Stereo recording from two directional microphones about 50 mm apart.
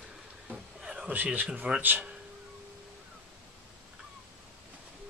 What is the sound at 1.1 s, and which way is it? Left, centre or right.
Speech, right.